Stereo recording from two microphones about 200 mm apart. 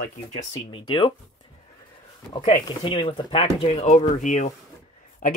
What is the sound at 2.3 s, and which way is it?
Speech, 25° left (ahead or behind).